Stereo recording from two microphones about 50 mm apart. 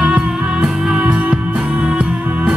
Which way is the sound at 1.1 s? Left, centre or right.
Right.